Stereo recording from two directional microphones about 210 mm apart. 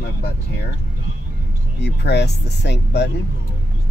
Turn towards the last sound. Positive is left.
turn(degrees=55)  # may be behind; listen again after turning